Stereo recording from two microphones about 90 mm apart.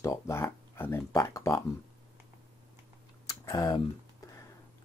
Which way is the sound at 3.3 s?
50° left (ahead or behind).